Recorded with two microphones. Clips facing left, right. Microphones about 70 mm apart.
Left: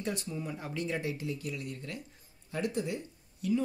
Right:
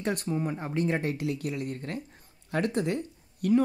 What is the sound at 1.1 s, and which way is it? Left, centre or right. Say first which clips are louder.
Speech: right 6 dB; right.